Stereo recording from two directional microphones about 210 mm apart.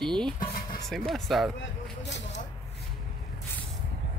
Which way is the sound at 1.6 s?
55° left (ahead or behind).